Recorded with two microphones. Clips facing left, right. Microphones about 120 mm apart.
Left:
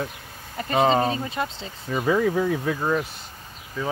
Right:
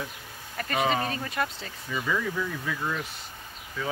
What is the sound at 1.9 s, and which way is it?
Speech, 50° left (ahead or behind).